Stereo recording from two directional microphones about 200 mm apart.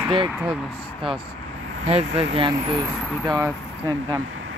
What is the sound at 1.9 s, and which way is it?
Speech, 30° right (ahead or behind).